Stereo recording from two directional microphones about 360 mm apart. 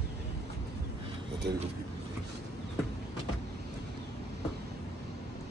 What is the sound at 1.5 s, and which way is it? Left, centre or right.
Speech, right.